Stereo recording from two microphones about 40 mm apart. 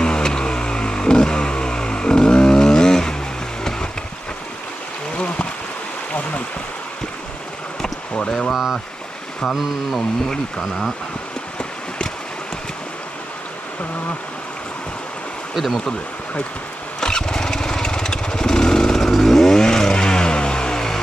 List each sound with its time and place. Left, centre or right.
0.0 s vehicle: left
5.1 s stream: left
8.1 s a sound: left
9.5 s a sound: centre
15.5 s speech: centre
17.0 s lawn mower: centre
19.1 s vehicle: centre